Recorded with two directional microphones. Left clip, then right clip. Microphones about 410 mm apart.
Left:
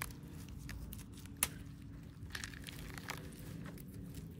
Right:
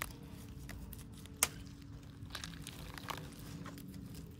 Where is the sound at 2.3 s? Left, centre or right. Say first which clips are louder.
Left 1 dB; centre.